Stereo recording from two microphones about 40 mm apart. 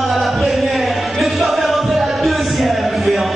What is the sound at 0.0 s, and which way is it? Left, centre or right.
Music, centre.